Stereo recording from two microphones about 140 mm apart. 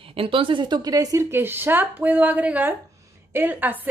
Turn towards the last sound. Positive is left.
turn(degrees=-10)  # may be behind; listen again after turning